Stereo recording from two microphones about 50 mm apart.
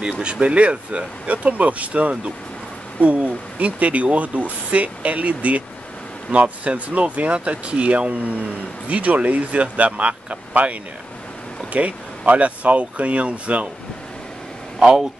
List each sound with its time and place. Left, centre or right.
0.2 s speech: centre